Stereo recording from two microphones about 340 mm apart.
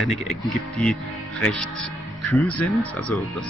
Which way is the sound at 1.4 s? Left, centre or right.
Centre.